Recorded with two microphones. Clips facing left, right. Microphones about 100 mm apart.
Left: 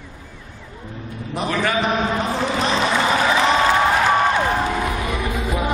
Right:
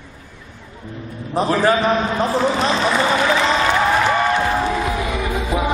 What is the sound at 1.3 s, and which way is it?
Speech, 35° right (ahead or behind).